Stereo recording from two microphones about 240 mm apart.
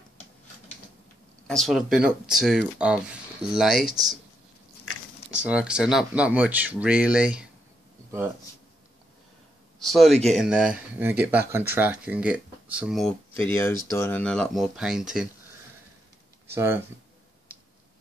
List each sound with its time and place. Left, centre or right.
1.5 s speech: centre
5.4 s speech: centre
9.8 s speech: centre
13.4 s speech: centre
16.5 s speech: centre